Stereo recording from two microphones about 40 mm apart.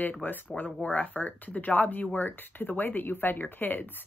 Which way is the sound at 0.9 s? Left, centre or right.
Left.